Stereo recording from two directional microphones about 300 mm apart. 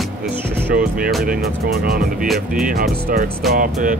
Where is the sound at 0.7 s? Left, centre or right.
Right.